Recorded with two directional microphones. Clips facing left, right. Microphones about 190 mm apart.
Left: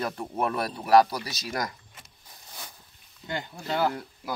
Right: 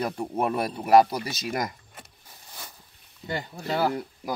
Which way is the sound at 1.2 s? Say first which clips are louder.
Right 5 dB; 55° right (ahead or behind).